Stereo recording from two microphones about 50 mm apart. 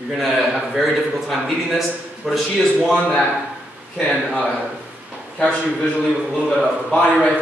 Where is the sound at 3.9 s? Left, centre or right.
Left.